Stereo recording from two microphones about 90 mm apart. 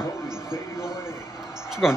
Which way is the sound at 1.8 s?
Centre (ahead or behind).